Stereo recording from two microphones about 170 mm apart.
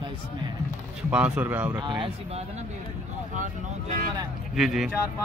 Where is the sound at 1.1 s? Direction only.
10° right (ahead or behind).